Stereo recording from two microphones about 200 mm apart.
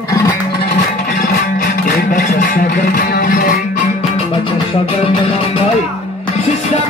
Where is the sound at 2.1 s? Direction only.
45° left (ahead or behind).